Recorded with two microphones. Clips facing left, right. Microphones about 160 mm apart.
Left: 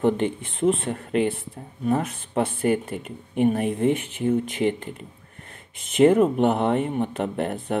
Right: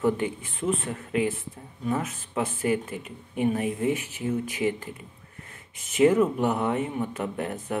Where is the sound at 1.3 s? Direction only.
30° left (ahead or behind).